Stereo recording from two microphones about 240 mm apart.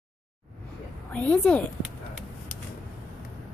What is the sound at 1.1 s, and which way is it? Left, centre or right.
Speech, centre.